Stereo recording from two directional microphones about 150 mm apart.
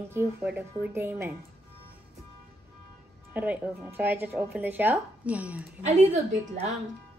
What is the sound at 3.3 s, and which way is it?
Speech, 10° right (ahead or behind).